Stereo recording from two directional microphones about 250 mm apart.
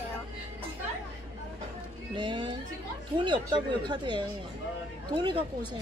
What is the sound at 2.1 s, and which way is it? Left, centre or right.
Speech, centre.